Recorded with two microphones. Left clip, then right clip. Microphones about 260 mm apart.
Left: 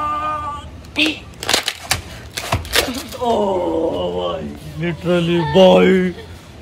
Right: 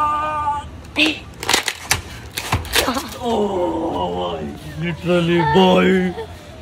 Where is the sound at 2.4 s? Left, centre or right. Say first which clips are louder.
Left 1 dB; centre.